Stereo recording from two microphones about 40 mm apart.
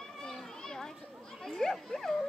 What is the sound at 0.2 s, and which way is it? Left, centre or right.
Children playing, centre.